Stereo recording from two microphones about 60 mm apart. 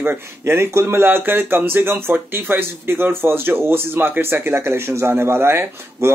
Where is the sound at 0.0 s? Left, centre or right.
Right.